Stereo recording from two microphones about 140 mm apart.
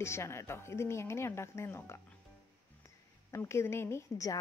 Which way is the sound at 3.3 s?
20° left (ahead or behind).